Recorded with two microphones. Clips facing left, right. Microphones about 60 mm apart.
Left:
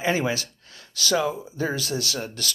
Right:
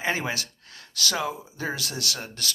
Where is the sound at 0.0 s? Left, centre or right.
Right.